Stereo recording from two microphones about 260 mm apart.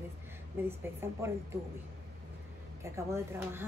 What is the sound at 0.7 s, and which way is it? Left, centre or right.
Speech, centre.